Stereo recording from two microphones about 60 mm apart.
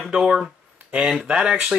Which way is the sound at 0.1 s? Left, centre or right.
Centre.